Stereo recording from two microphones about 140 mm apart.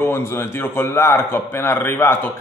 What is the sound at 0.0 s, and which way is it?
A man's voice, 15° left (ahead or behind).